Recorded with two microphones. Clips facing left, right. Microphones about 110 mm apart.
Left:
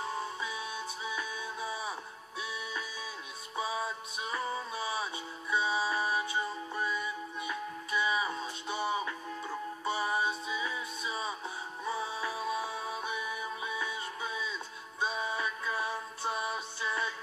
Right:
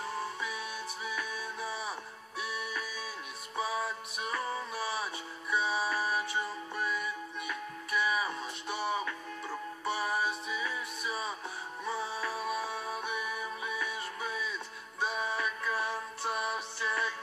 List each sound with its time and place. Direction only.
0.2 s music: 25° left (ahead or behind)
11.8 s music: centre (ahead or behind)
12.2 s music: 25° left (ahead or behind)